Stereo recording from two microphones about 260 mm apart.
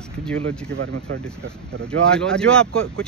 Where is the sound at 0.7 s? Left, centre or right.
Right.